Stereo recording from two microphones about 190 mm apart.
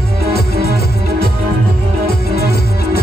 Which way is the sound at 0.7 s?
55° left (ahead or behind).